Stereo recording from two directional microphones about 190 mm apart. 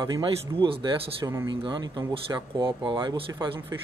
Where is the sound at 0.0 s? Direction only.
25° right (ahead or behind).